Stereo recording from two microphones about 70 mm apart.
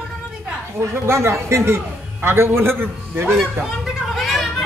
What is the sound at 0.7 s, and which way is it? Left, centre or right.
A man's voice, right.